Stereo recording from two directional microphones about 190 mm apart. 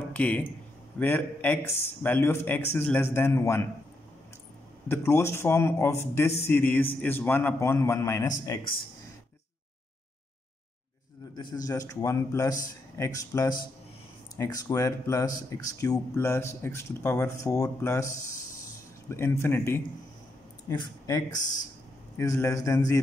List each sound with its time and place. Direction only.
0.1 s speech: 5° left (ahead or behind)
4.8 s speech: 15° left (ahead or behind)
11.3 s speech: 20° left (ahead or behind)